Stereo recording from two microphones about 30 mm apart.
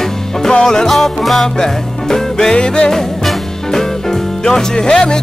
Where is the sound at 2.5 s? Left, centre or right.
Left.